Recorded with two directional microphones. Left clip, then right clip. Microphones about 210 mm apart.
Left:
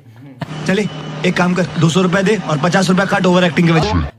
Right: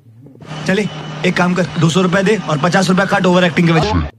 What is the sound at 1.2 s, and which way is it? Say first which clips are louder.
Speech: right 1 dB; centre (ahead or behind).